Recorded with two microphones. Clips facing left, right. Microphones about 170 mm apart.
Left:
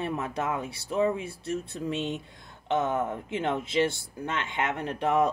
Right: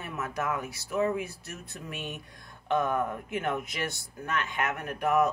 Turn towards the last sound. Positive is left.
turn(degrees=25)  # may be behind; listen again after turning